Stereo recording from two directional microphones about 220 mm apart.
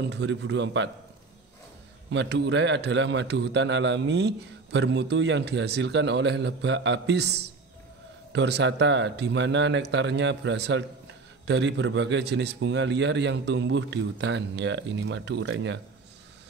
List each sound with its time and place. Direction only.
0.1 s a man's voice: 50° right (ahead or behind)
2.0 s a man's voice: 55° right (ahead or behind)